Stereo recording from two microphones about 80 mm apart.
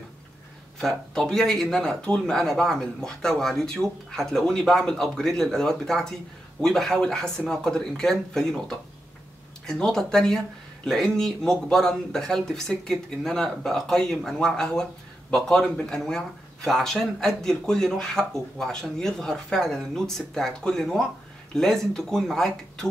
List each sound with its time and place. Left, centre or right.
0.7 s speech: centre